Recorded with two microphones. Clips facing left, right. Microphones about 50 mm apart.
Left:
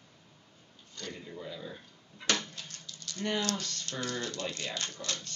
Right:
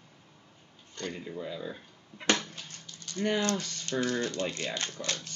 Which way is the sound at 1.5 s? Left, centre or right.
Centre.